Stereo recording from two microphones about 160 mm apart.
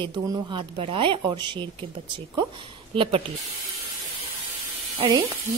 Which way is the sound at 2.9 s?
35° right (ahead or behind).